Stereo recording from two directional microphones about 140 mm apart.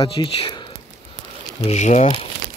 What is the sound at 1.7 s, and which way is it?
Speech, 55° left (ahead or behind).